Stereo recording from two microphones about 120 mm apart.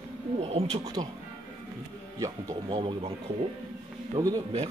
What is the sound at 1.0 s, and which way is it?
Speech, 35° right (ahead or behind).